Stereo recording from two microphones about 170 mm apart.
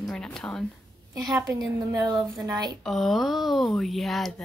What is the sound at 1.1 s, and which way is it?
A woman's voice, 20° right (ahead or behind).